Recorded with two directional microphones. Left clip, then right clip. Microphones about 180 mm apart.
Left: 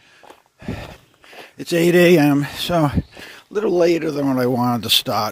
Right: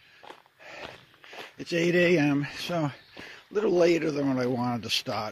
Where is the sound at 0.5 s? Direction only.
30° left (ahead or behind).